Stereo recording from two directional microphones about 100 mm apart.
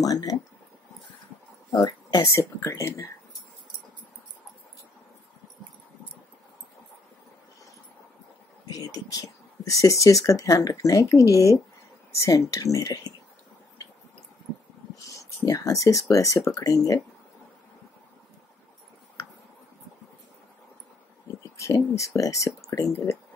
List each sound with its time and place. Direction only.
0.0 s speech: 40° left (ahead or behind)
1.7 s speech: 45° left (ahead or behind)
2.2 s speech: 30° left (ahead or behind)
8.6 s speech: 35° left (ahead or behind)
15.4 s speech: 35° left (ahead or behind)
21.4 s a sound: 30° left (ahead or behind)
21.9 s speech: 35° left (ahead or behind)